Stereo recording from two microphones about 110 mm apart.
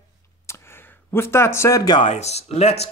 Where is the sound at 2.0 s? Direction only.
80° left.